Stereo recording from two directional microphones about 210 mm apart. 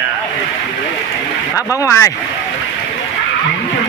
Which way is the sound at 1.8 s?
15° left (ahead or behind).